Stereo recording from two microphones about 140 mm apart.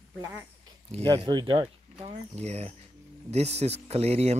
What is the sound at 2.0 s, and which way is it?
Speech, 50° right (ahead or behind).